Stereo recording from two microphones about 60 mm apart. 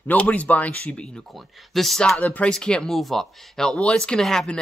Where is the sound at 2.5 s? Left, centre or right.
Centre.